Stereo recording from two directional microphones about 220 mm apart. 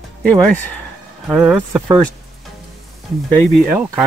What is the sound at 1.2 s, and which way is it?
Speech, 5° right (ahead or behind).